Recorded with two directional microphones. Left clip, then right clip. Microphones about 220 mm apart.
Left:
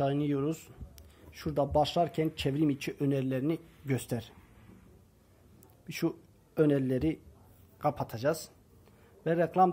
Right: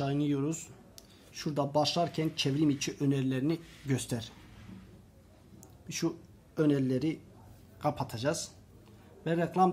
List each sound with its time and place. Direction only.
0.0 s speech: 20° left (ahead or behind)
5.9 s speech: 30° left (ahead or behind)